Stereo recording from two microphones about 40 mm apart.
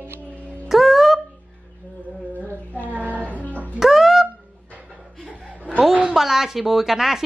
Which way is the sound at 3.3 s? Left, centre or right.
Left.